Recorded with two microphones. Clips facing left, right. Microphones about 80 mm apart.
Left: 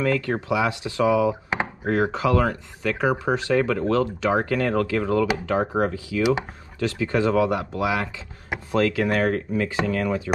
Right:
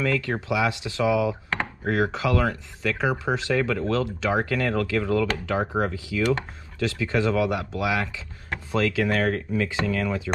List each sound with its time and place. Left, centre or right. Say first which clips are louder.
0.0 s speech: left 2 dB; left
1.5 s a sound: left 2 dB; centre
2.0 s speech: left 3 dB; left
5.2 s speech: left 3 dB; centre
5.6 s speech: left 3 dB; left